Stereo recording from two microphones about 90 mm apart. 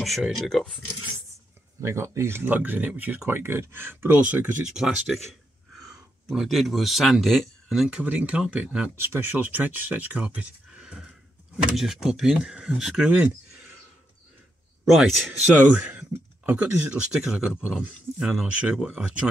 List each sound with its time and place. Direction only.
0.0 s speech: centre (ahead or behind)
1.8 s speech: 30° right (ahead or behind)
4.6 s speech: 5° right (ahead or behind)
8.0 s speech: 15° right (ahead or behind)
9.0 s speech: 25° right (ahead or behind)
14.9 s speech: centre (ahead or behind)